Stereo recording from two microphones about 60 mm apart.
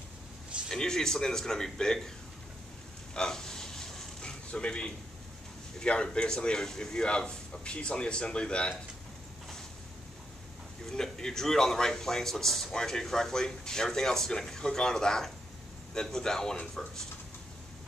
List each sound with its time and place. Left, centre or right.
0.7 s a man's voice: centre
3.2 s a sound: centre
5.8 s a man's voice: centre
10.9 s a man's voice: centre